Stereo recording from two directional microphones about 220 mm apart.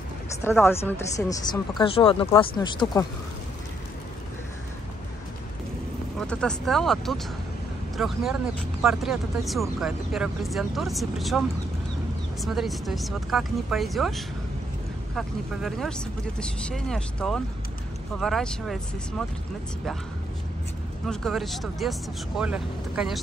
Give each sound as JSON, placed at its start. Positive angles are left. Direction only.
{"t": 0.4, "sound": "speech", "side_deg": 10}
{"t": 6.1, "sound": "speech", "side_deg": 5}
{"t": 21.1, "sound": "speech", "side_deg": 0}